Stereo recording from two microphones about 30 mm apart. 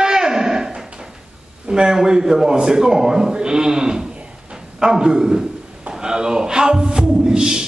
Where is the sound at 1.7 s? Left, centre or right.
Right.